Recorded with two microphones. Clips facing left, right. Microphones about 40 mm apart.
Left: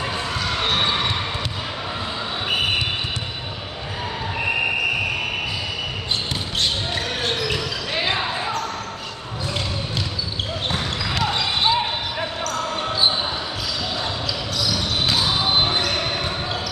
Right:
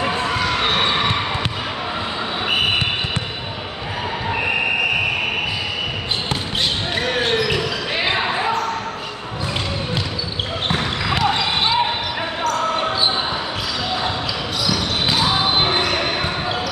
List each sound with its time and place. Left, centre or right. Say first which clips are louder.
0.0 s basketball bounce: right 5 dB; right
7.0 s basketball bounce: right 5 dB; right
11.1 s basketball bounce: right 3 dB; centre
14.7 s basketball bounce: right 2 dB; centre